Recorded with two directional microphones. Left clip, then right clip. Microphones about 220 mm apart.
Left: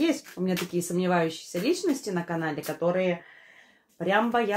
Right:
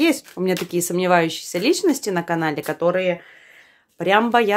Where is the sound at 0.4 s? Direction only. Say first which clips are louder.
Right 8 dB; 40° right (ahead or behind).